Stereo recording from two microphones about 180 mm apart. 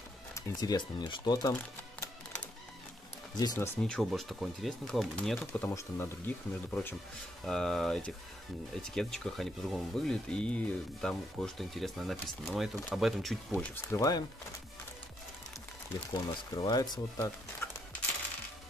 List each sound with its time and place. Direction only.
0.3 s speech: 20° left (ahead or behind)
3.3 s speech: 20° left (ahead or behind)
3.8 s speech: centre (ahead or behind)
13.9 s speech: 20° left (ahead or behind)
16.1 s speech: 20° left (ahead or behind)